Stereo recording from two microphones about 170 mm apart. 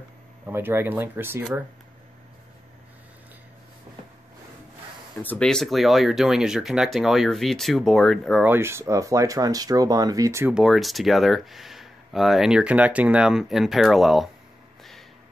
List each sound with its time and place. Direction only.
0.5 s speech: 10° right (ahead or behind)
5.2 s speech: 5° left (ahead or behind)
8.5 s speech: 15° right (ahead or behind)
10.5 s speech: centre (ahead or behind)
14.8 s a sound: centre (ahead or behind)